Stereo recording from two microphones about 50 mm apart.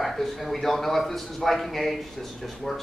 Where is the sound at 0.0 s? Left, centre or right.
Centre.